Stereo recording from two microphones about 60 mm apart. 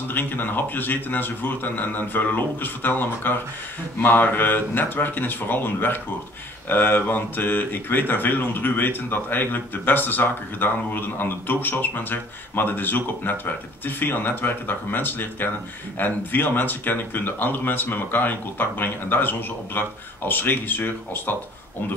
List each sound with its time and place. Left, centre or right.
0.1 s speech: left